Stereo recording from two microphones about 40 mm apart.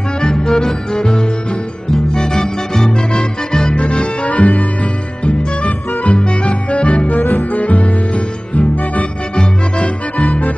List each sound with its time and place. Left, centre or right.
0.2 s music: centre
0.9 s music: left
3.7 s accordion: left
5.2 s music: left
10.2 s music: left